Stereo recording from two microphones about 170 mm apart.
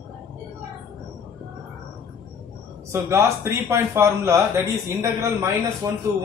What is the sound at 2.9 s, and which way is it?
A man's voice, 15° right (ahead or behind).